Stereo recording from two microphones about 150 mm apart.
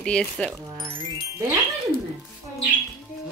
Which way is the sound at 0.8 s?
35° right (ahead or behind).